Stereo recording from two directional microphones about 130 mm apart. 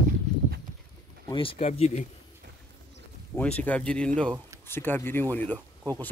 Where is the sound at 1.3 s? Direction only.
45° left (ahead or behind).